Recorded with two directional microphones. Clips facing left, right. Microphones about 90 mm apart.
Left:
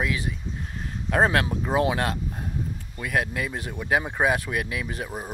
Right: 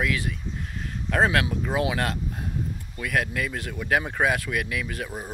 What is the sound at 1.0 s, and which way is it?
Speech, 20° left (ahead or behind).